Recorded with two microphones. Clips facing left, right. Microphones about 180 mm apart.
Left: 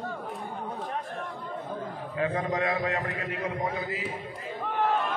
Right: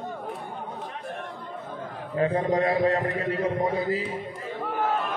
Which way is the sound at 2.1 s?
35° right (ahead or behind).